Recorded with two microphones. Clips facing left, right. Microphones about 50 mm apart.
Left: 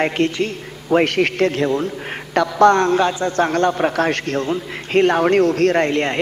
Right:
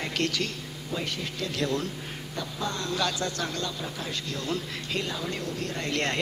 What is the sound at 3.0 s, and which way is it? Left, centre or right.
A man's voice, left.